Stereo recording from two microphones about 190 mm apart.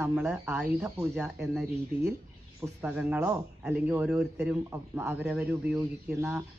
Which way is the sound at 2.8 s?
10° right (ahead or behind).